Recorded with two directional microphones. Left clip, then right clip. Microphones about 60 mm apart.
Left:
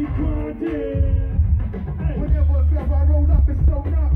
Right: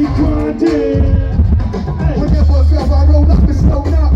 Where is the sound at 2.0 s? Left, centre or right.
Right.